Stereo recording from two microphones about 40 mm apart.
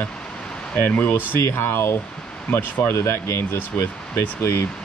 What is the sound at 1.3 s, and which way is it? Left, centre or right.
Speech, left.